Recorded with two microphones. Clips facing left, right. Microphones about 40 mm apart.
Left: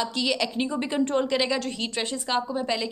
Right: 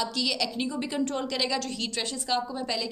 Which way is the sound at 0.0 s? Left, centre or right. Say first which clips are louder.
Left 3 dB; left.